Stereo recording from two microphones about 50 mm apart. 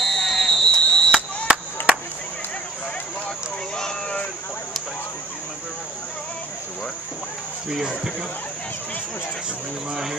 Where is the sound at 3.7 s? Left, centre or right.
Centre.